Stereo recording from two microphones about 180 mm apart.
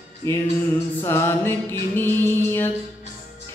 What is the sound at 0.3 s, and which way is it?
Music, 15° left (ahead or behind).